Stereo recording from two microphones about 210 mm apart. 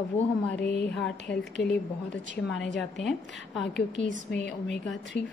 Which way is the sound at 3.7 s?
55° left (ahead or behind).